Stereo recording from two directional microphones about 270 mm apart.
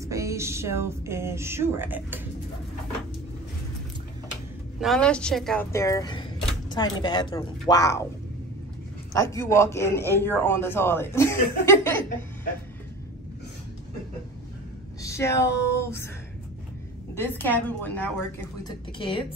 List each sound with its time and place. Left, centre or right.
0.0 s speech: centre
4.7 s a woman's voice: centre
9.1 s a man's voice: centre
15.0 s speech: centre
17.1 s a man's voice: centre
18.9 s a woman's voice: centre